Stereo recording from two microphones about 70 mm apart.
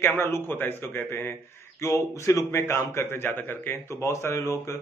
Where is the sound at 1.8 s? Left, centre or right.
Left.